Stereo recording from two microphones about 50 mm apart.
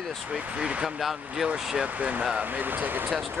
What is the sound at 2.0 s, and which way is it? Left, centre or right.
Speech, right.